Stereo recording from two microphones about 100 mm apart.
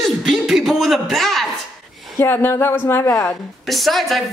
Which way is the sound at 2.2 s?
20° left (ahead or behind).